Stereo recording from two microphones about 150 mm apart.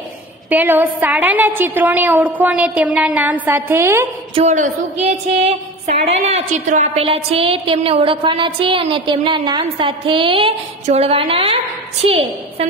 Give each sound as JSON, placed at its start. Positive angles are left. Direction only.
{"t": 0.5, "sound": "a woman's voice", "side_deg": -10}
{"t": 4.4, "sound": "a woman's voice", "side_deg": -50}